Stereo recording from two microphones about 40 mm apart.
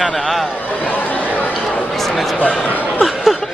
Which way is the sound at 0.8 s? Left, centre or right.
Left.